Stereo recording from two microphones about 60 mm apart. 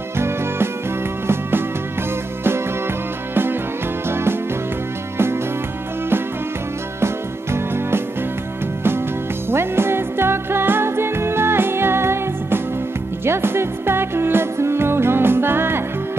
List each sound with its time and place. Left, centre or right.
1.2 s music: right
4.1 s music: right
7.5 s music: right
9.5 s music: right